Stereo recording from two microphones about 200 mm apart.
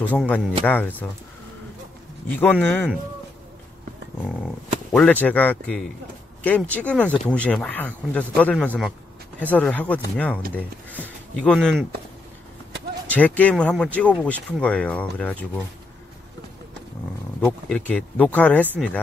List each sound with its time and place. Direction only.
0.2 s speech: 5° left (ahead or behind)
2.4 s speech: 10° left (ahead or behind)
4.9 s speech: 5° left (ahead or behind)
13.1 s speech: 5° left (ahead or behind)
17.5 s speech: 5° left (ahead or behind)